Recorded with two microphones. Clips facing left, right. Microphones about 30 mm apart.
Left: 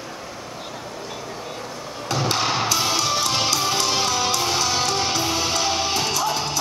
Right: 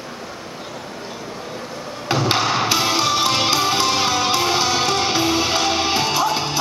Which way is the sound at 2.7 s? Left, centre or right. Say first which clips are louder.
Right 3 dB; right.